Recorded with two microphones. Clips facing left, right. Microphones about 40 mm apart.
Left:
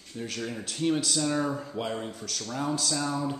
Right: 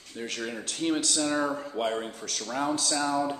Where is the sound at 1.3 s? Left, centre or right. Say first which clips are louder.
Right 1 dB; centre.